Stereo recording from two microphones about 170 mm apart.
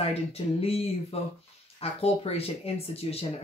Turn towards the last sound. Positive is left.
turn(degrees=35)  # may be behind; listen again after turning